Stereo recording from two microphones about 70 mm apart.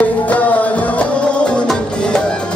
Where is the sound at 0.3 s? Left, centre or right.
Left.